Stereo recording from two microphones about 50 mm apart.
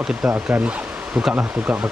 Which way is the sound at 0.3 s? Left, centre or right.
Right.